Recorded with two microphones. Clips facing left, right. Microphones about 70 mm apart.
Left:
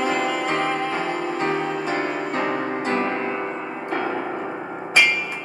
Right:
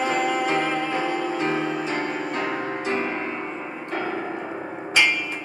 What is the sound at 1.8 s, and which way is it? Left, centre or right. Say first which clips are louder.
Music: left 2 dB; left.